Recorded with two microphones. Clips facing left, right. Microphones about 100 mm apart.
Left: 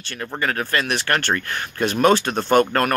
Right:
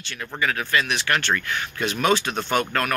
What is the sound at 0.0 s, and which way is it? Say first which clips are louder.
Speech: left 2 dB; 40° left (ahead or behind).